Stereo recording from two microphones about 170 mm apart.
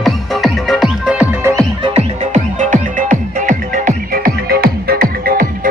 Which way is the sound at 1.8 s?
40° right (ahead or behind).